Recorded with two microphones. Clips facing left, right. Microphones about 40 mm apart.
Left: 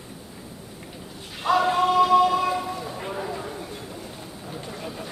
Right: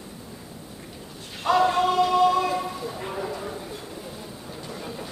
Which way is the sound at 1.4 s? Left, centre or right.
Centre.